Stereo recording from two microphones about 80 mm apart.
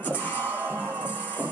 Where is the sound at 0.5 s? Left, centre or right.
Right.